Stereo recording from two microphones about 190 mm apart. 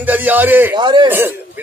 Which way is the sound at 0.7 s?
25° right (ahead or behind).